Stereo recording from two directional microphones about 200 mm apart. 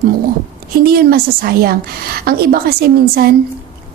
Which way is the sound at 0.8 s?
50° right (ahead or behind).